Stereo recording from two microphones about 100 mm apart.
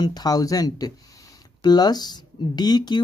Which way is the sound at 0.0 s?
40° left (ahead or behind).